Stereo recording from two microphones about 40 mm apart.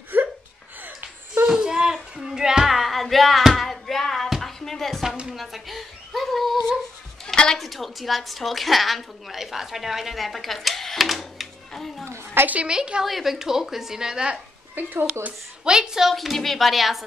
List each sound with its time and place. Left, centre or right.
0.1 s gasp: right
0.8 s wheeze: right
1.5 s child singing: centre
2.7 s music: centre
5.3 s a sound: centre
7.5 s a woman's voice: centre
12.6 s a woman's voice: right
13.0 s a woman's voice: centre
14.8 s speech: right
15.6 s a woman's voice: centre